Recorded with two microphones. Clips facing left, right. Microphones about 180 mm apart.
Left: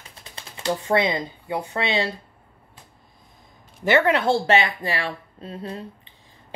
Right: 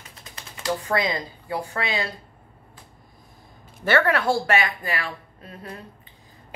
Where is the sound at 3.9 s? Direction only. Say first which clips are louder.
Left 2 dB; 20° left (ahead or behind).